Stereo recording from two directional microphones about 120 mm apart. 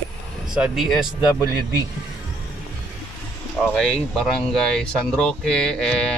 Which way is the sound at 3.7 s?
5° left (ahead or behind).